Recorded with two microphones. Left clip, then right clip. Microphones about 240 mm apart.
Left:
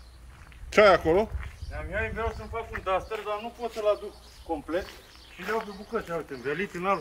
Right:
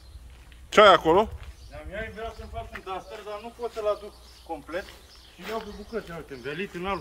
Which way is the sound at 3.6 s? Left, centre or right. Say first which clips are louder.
Even; left.